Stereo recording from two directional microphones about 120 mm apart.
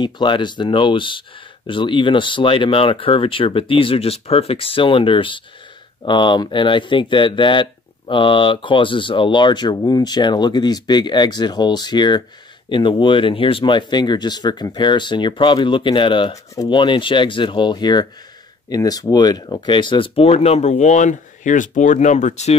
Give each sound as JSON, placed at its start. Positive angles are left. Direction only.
{"t": 0.0, "sound": "speech", "side_deg": 40}